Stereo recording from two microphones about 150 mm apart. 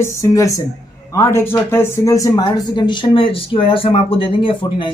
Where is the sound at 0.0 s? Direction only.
20° left (ahead or behind).